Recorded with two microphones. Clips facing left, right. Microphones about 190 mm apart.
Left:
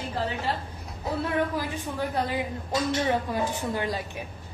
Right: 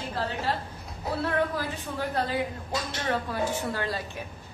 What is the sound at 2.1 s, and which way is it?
A woman's voice, 15° left (ahead or behind).